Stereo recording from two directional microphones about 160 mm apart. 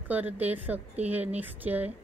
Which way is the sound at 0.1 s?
10° right (ahead or behind).